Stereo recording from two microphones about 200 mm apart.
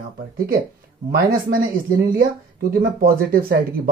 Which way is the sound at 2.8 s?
45° right (ahead or behind).